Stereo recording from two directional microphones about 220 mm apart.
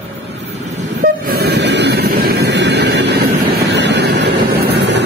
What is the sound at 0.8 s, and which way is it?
Train, 45° right (ahead or behind).